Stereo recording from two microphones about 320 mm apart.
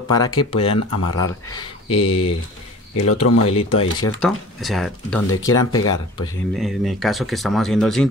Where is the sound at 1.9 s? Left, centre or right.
Left.